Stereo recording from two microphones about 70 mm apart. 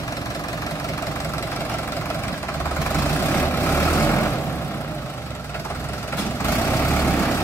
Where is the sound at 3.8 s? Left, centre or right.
Left.